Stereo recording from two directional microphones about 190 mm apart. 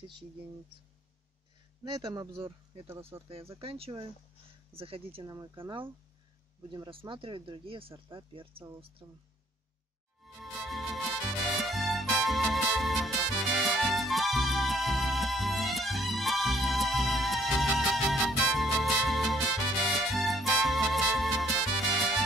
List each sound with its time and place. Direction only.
2.0 s speech: 20° right (ahead or behind)
2.9 s speech: 15° right (ahead or behind)
3.6 s speech: 30° right (ahead or behind)
9.0 s speech: 15° right (ahead or behind)
10.2 s music: centre (ahead or behind)